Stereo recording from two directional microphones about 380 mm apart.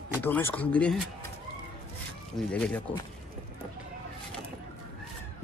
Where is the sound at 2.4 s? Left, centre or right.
Centre.